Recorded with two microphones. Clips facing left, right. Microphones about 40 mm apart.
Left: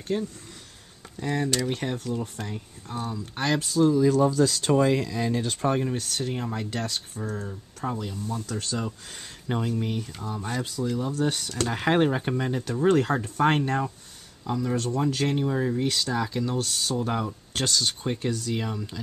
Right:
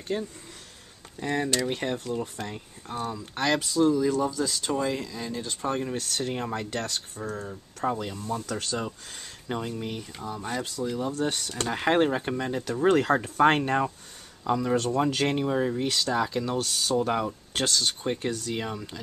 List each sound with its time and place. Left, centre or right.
0.1 s speech: centre
4.3 s speech: left
5.9 s speech: centre
14.6 s speech: right
15.7 s speech: centre